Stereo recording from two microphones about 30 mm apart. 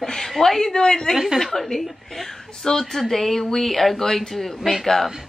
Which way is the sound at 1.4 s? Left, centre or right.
Centre.